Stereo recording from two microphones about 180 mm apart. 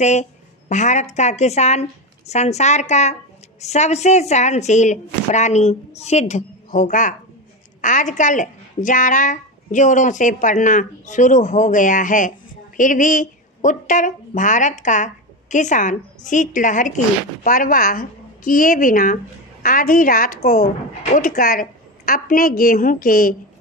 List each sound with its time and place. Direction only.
0.0 s a woman's voice: 40° left (ahead or behind)